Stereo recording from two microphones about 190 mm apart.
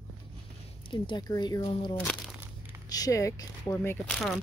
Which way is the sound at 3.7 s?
5° left (ahead or behind).